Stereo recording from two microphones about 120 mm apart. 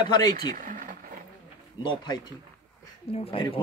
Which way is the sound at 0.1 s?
35° left (ahead or behind).